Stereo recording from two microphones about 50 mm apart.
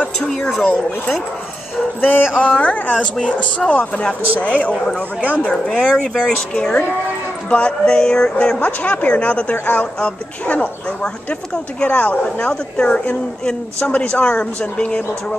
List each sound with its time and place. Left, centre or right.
0.3 s speech: centre
2.0 s a woman's voice: left
3.0 s a woman's voice: left
4.7 s speech: centre
6.5 s a woman's voice: left
8.5 s a woman's voice: left